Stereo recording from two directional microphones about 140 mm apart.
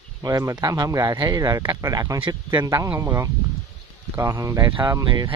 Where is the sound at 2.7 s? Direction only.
20° right (ahead or behind).